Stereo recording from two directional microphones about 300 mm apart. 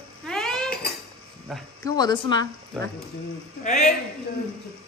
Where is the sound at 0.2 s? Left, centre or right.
Centre.